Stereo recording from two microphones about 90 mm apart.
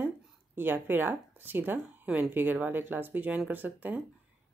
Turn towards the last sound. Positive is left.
turn(degrees=-20)  # may be behind; listen again after turning